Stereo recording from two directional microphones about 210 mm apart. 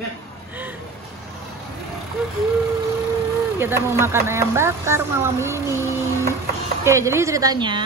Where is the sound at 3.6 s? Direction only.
10° right (ahead or behind).